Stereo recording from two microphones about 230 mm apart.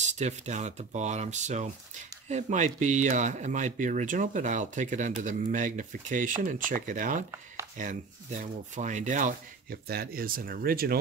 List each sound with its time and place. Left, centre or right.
0.0 s speech: right